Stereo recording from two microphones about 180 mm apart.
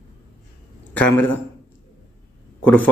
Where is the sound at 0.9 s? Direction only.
10° left (ahead or behind).